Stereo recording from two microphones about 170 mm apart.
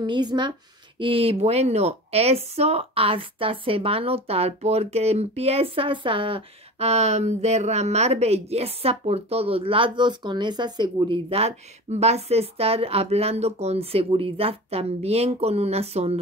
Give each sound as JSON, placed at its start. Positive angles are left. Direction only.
{"t": 0.0, "sound": "speech", "side_deg": -25}